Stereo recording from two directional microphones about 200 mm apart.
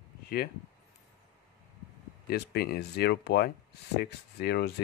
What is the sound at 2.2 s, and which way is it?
Speech, 50° left (ahead or behind).